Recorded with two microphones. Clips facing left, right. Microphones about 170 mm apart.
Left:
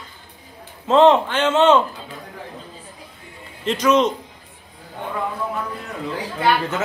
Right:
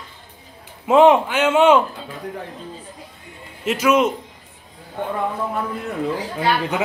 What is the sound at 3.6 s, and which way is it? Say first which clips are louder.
Speech: even; 10° right (ahead or behind).